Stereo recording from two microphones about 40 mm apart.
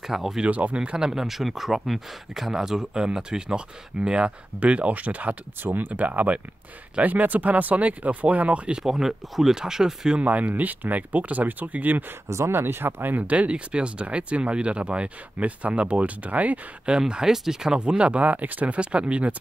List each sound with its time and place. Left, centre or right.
0.0 s speech: centre
0.5 s speech: right; by 1.2 s centre
1.2 s speech: centre; by 4.3 s right
4.6 s speech: right
5.6 s speech: right
8.8 s speech: centre
10.2 s speech: right
12.4 s speech: right
13.3 s speech: right
17.1 s speech: centre
17.7 s speech: right
18.2 s speech: right
18.8 s speech: right